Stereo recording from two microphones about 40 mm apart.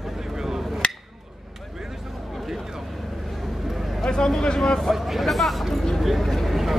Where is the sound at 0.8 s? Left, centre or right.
Left.